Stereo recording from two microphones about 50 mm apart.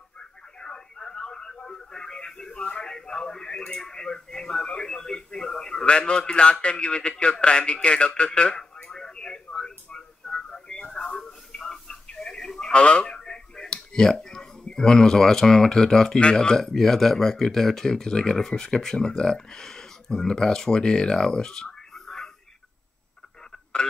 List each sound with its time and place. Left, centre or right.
0.6 s a sound: centre
11.2 s telephone: centre
16.2 s speech: centre